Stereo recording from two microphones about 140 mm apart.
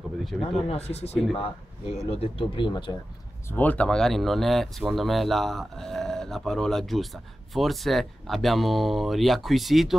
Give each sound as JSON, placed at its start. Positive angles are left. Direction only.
{"t": 0.2, "sound": "speech", "side_deg": 0}
{"t": 0.7, "sound": "speech", "side_deg": 50}
{"t": 3.4, "sound": "speech", "side_deg": 10}